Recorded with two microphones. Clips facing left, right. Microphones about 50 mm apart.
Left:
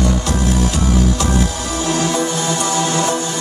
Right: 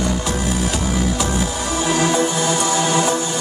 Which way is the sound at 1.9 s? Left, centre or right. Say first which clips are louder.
Even; centre.